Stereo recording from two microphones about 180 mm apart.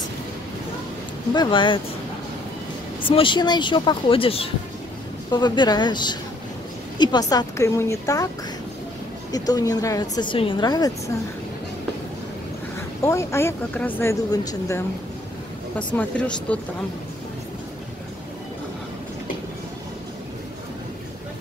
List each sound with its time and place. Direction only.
1.3 s a woman's voice: 25° left (ahead or behind)
3.1 s a woman's voice: 30° left (ahead or behind)
9.3 s a woman's voice: 20° left (ahead or behind)
13.0 s speech: 15° left (ahead or behind)
15.7 s speech: 10° left (ahead or behind)